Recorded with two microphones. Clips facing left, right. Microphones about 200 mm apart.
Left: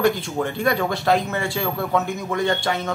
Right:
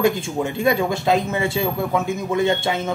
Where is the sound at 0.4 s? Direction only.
15° right (ahead or behind).